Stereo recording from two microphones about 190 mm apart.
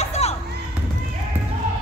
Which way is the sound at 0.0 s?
35° left (ahead or behind).